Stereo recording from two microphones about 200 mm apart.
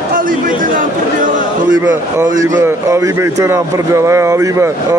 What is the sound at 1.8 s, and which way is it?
A man's voice, 10° right (ahead or behind).